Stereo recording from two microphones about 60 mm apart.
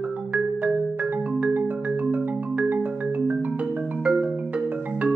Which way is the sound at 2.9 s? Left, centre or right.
Right.